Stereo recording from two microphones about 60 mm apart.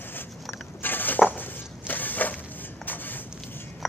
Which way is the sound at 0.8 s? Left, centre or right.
Left.